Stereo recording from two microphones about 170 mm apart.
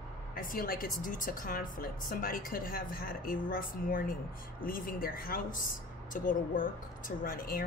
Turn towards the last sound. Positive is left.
turn(degrees=55)  # may be behind; listen again after turning